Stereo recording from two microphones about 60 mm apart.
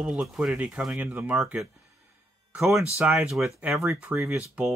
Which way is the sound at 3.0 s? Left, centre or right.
Right.